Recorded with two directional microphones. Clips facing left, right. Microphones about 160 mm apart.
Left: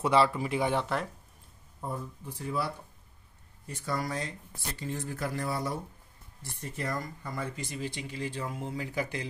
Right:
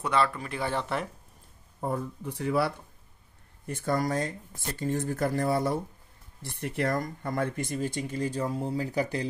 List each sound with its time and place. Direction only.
0.0 s speech: 25° left (ahead or behind)
0.8 s speech: 5° right (ahead or behind)
1.8 s speech: 75° right (ahead or behind)
3.6 s speech: 55° right (ahead or behind)
6.4 s speech: 65° right (ahead or behind); by 9.3 s 35° right (ahead or behind)